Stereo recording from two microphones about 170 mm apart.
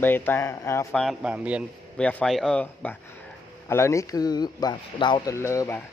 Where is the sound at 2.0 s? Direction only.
5° left (ahead or behind).